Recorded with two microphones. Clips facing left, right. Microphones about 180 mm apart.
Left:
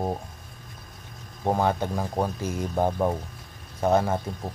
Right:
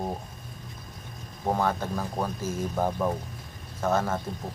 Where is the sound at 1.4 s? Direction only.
20° left (ahead or behind).